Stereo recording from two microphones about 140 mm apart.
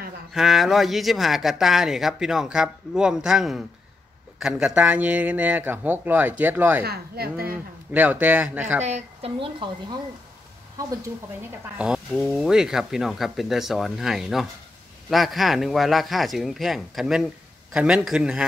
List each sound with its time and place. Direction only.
0.3 s a man's voice: centre (ahead or behind)
6.8 s speech: 90° right
7.9 s a man's voice: 10° right (ahead or behind)
8.8 s a woman's voice: 50° right (ahead or behind)
12.1 s speech: 5° left (ahead or behind)